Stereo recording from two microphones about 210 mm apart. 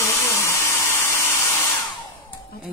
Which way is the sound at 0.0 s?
15° left (ahead or behind).